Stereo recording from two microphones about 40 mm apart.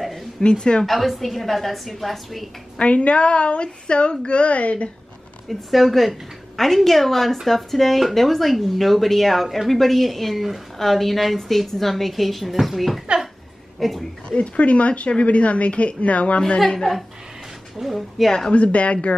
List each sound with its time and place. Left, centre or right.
0.4 s speech: left
0.8 s speech: centre
2.8 s speech: left
5.5 s speech: centre
14.3 s a woman's voice: left
16.5 s a woman's voice: centre
17.7 s speech: centre
18.5 s a woman's voice: left